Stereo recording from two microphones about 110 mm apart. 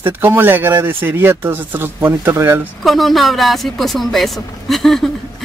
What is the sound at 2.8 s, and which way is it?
Speech, centre (ahead or behind).